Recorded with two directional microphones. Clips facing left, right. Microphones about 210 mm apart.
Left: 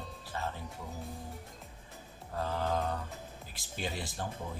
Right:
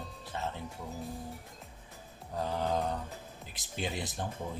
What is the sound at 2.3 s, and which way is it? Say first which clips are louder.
Mantra: right 1 dB; 15° right (ahead or behind).